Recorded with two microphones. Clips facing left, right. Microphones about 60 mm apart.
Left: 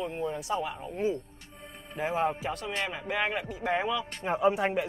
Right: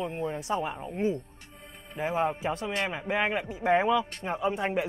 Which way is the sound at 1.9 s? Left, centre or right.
Centre.